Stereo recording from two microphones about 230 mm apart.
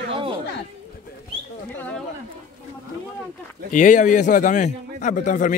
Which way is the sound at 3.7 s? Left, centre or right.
Left.